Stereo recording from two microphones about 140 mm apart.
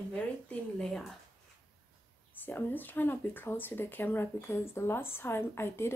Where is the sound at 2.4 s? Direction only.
15° left (ahead or behind).